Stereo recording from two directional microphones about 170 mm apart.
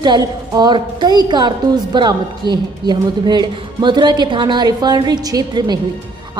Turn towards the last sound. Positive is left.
turn(degrees=-25)  # may be behind; listen again after turning